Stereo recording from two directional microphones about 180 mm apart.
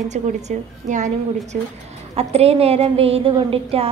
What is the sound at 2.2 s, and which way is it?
A woman's voice, 35° right (ahead or behind).